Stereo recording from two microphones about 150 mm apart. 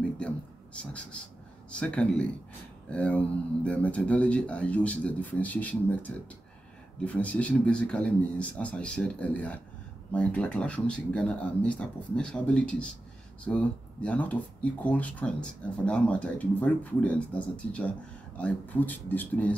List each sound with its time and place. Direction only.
1.7 s speech: 5° left (ahead or behind)